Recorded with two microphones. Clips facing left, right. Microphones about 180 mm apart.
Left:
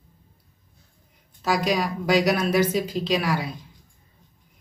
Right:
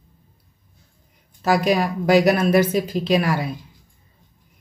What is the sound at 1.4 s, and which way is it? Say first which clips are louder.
Speech: right 5 dB; 55° right (ahead or behind).